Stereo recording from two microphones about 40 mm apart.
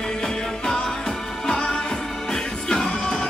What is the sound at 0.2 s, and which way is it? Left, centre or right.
Music, centre.